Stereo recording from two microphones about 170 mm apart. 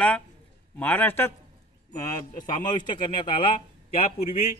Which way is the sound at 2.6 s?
25° left (ahead or behind).